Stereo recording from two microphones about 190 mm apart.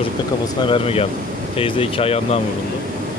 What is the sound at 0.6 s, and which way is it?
Speech, 30° left (ahead or behind).